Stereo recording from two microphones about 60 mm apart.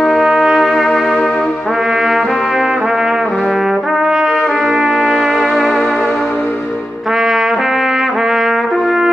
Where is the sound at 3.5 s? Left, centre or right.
Centre.